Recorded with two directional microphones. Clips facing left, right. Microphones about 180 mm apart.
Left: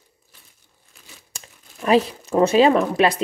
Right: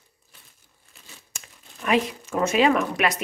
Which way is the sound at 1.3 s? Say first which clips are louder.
Left 2 dB; 35° left (ahead or behind).